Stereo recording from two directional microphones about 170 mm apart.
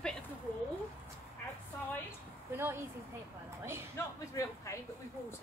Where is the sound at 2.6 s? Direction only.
15° right (ahead or behind).